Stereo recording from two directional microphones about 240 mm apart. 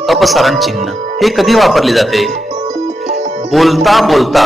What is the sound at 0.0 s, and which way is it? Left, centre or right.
Speech, centre.